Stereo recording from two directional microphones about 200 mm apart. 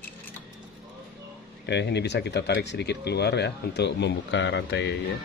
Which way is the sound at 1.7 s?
60° left (ahead or behind).